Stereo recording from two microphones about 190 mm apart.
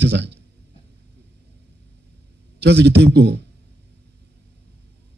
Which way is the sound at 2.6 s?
60° right (ahead or behind).